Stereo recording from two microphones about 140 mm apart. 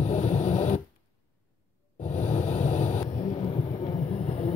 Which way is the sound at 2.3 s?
55° left (ahead or behind).